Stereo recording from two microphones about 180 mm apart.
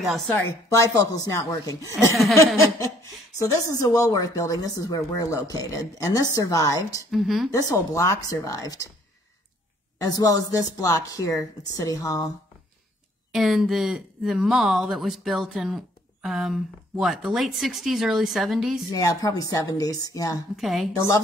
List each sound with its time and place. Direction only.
0.0 s speech: centre (ahead or behind)
0.7 s speech: 20° left (ahead or behind)
7.1 s speech: centre (ahead or behind)
7.5 s speech: 20° left (ahead or behind)
9.9 s speech: 20° left (ahead or behind)
13.3 s speech: centre (ahead or behind)
18.9 s speech: 20° left (ahead or behind)
20.5 s speech: centre (ahead or behind)
20.9 s speech: 20° left (ahead or behind)